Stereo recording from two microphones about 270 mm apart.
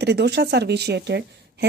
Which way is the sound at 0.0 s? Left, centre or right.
Right.